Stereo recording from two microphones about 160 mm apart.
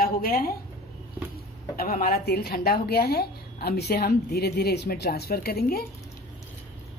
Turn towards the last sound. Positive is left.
turn(degrees=75)  # may be behind; listen again after turning